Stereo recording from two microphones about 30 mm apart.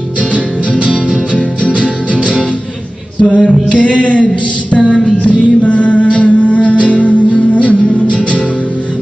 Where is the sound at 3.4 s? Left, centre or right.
Left.